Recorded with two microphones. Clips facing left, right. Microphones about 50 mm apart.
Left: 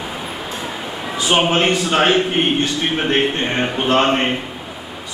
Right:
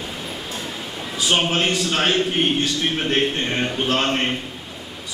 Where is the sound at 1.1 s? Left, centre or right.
Centre.